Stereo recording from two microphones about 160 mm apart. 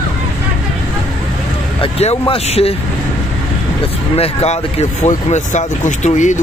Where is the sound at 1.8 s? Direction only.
35° left (ahead or behind).